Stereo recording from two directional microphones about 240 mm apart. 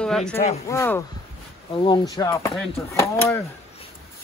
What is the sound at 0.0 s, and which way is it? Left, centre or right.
Speech, centre.